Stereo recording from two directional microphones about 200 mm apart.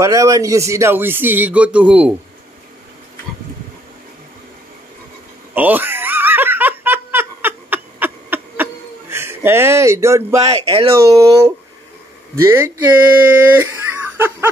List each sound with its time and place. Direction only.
0.0 s a man's voice: 15° right (ahead or behind)
5.5 s giggle: 10° right (ahead or behind)
9.1 s speech: 10° right (ahead or behind)
10.4 s speech: 30° right (ahead or behind)
11.1 s a man's voice: 15° right (ahead or behind)
14.1 s music: 10° right (ahead or behind)